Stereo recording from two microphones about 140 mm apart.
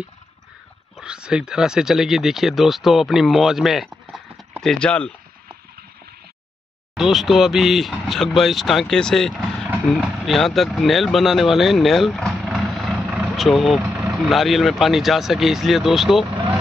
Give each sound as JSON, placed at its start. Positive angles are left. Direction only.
{"t": 0.9, "sound": "speech", "side_deg": -5}
{"t": 7.0, "sound": "speech", "side_deg": 0}
{"t": 13.0, "sound": "vehicle", "side_deg": -5}
{"t": 13.7, "sound": "speech", "side_deg": -5}